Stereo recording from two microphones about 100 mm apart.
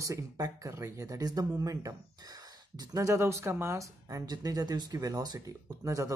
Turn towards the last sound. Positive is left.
turn(degrees=-30)  # may be behind; listen again after turning